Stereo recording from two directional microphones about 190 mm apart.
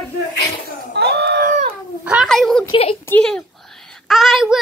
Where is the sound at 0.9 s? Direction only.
60° right (ahead or behind).